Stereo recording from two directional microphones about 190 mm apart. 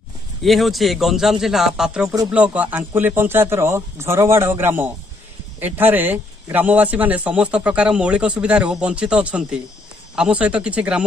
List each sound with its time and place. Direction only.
0.4 s a man's voice: centre (ahead or behind)
2.0 s speech: 20° right (ahead or behind)
2.3 s a man's voice: 5° right (ahead or behind)